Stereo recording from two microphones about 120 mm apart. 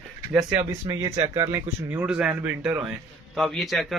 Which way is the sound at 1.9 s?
10° right (ahead or behind).